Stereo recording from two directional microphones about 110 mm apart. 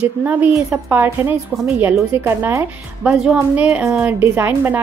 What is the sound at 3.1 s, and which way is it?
A woman's voice, 5° right (ahead or behind).